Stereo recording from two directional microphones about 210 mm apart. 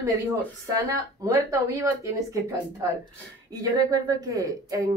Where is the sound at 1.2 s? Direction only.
15° right (ahead or behind).